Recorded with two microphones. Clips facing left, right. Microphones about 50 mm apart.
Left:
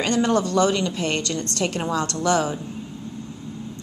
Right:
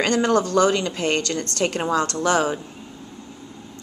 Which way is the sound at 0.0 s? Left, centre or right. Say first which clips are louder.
Right 1 dB; right.